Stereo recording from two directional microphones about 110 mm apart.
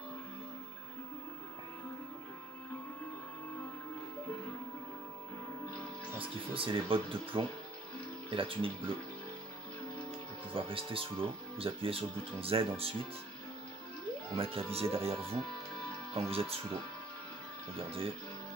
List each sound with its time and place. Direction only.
6.1 s speech: 55° right (ahead or behind)
10.5 s speech: 55° right (ahead or behind)
14.3 s speech: 55° right (ahead or behind)
17.7 s speech: 55° right (ahead or behind)